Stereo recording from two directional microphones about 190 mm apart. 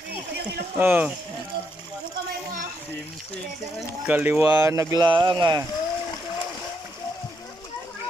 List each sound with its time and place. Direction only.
0.7 s speech: 10° right (ahead or behind)
4.1 s speech: 10° right (ahead or behind)